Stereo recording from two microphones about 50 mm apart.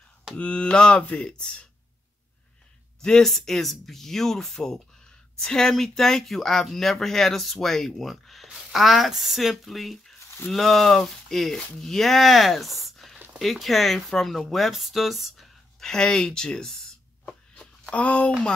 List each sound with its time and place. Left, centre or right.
0.4 s mantra: left
3.0 s speech: centre
17.2 s a sound: centre
17.9 s mantra: left